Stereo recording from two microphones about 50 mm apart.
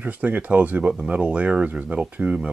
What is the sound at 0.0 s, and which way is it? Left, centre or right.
Speech, right.